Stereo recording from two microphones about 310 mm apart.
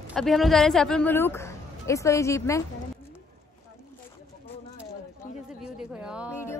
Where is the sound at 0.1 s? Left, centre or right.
Centre.